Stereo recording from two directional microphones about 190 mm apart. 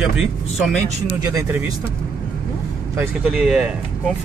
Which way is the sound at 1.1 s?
20° right (ahead or behind).